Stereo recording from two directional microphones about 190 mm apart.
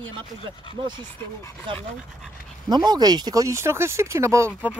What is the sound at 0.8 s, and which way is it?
Speech, 25° right (ahead or behind).